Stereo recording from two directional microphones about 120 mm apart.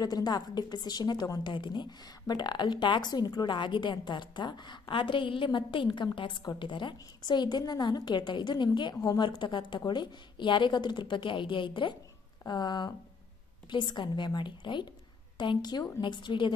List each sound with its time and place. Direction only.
0.0 s a woman's voice: 35° left (ahead or behind)